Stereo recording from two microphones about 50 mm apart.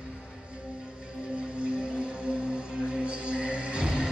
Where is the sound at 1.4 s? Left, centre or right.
Centre.